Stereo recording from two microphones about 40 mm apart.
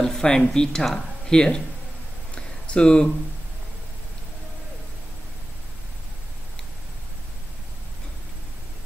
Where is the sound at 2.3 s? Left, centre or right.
Left.